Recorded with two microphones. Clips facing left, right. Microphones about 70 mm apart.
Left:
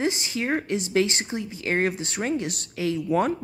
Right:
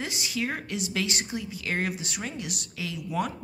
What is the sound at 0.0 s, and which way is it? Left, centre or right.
Speech, left.